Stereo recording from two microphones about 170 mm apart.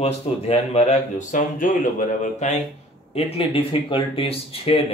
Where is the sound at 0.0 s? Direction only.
40° left (ahead or behind).